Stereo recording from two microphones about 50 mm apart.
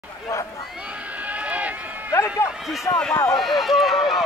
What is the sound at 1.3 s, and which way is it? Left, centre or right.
Run, right.